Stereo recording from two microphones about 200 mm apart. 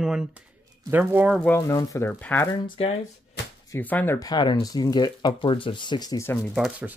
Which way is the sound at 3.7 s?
10° left (ahead or behind).